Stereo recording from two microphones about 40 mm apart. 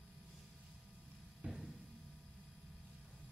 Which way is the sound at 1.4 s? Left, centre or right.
Right.